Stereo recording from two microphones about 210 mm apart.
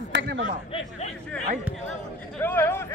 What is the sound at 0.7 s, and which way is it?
Speech, 30° left (ahead or behind).